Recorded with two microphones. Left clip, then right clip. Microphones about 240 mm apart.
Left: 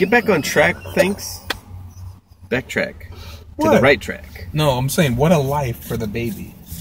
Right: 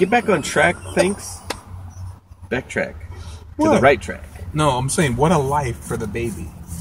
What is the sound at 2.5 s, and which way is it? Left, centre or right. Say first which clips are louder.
Speech: left 2 dB; centre.